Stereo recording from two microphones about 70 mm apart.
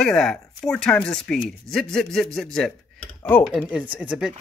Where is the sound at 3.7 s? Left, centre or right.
Centre.